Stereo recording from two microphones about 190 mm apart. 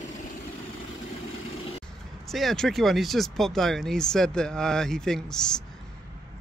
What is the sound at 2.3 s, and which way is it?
Speech, centre (ahead or behind).